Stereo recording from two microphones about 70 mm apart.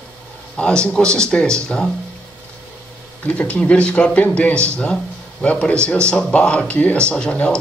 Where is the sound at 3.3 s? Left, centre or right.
Centre.